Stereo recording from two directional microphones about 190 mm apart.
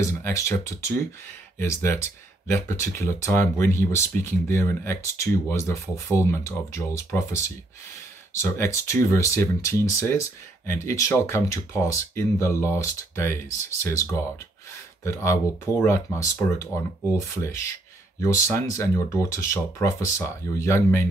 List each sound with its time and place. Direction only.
0.0 s speech: 15° left (ahead or behind)
15.0 s speech: 15° left (ahead or behind)
18.2 s speech: 15° left (ahead or behind)